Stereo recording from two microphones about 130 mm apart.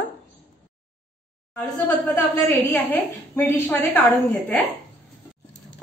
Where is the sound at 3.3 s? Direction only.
15° left (ahead or behind).